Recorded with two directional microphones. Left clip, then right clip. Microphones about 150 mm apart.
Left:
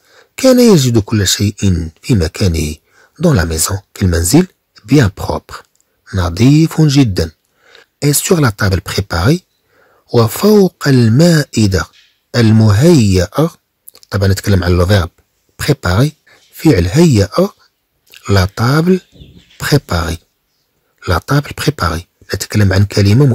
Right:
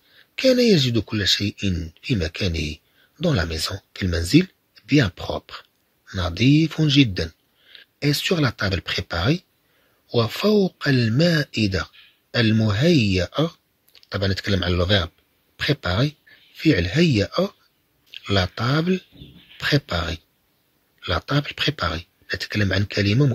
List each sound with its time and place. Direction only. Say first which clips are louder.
0.4 s speech: left 9 dB; 90° left